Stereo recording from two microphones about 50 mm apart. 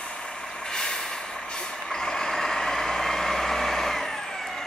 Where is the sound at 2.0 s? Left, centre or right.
Centre.